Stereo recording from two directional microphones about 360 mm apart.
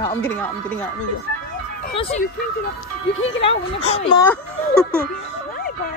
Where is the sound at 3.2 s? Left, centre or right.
Left.